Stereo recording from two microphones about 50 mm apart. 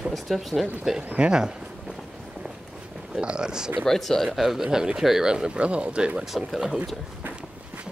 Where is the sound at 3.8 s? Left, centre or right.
Centre.